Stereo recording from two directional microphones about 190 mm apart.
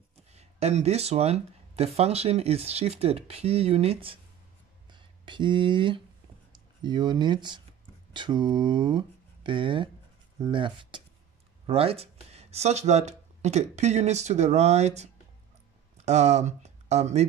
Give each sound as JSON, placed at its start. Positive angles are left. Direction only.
{"t": 0.3, "sound": "speech", "side_deg": -35}
{"t": 16.1, "sound": "speech", "side_deg": -35}